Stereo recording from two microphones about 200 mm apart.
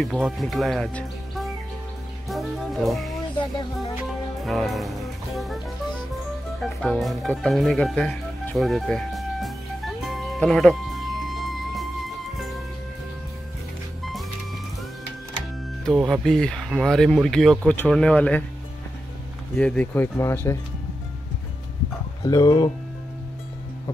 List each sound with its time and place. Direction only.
0.0 s speech: centre (ahead or behind)
2.2 s music: centre (ahead or behind)
6.6 s music: centre (ahead or behind)
15.8 s speech: centre (ahead or behind)
19.5 s speech: 5° left (ahead or behind)
22.2 s speech: 20° left (ahead or behind)